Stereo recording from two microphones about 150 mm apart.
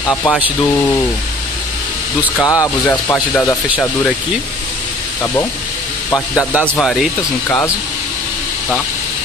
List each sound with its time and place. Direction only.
0.1 s speech: 10° left (ahead or behind)
2.4 s speech: 20° left (ahead or behind)
5.2 s a man's voice: 20° left (ahead or behind)
6.6 s speech: 5° left (ahead or behind)
7.4 s speech: 15° left (ahead or behind)